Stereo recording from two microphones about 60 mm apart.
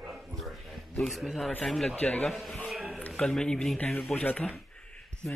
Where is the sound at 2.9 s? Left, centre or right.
Left.